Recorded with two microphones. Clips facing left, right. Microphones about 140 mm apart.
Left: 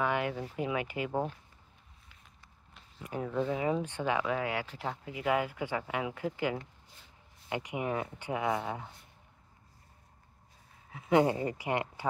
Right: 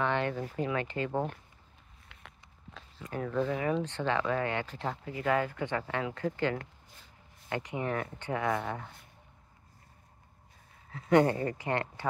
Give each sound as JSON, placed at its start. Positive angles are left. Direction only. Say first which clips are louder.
{"t": 0.0, "sound": "speech", "louder": "right 1 dB", "side_deg": 10}
{"t": 2.0, "sound": "a sound", "louder": "right 8 dB", "side_deg": -70}
{"t": 3.0, "sound": "speech", "louder": "right 1 dB", "side_deg": 15}
{"t": 10.9, "sound": "speech", "louder": "right 2 dB", "side_deg": 10}